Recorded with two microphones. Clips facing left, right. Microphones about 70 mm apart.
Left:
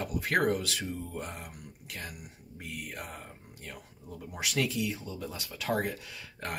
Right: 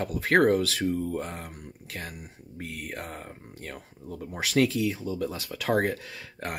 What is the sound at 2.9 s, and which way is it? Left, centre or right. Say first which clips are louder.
Speech: right 4 dB; right.